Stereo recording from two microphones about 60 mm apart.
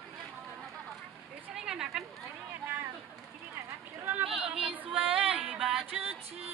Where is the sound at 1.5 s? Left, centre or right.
Centre.